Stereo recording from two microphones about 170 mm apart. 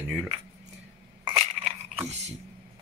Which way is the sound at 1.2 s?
35° right (ahead or behind).